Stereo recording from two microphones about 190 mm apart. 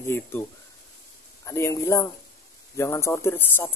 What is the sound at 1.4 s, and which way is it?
Speech, 15° left (ahead or behind).